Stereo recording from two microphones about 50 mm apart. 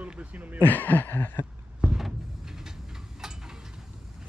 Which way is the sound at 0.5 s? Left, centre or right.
Left.